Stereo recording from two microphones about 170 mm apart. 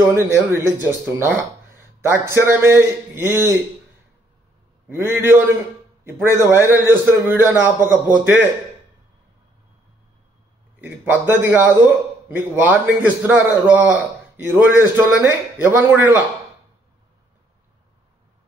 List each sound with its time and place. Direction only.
0.1 s a man's voice: 15° right (ahead or behind)
4.8 s a man's voice: 15° right (ahead or behind)
10.8 s a man's voice: 10° right (ahead or behind)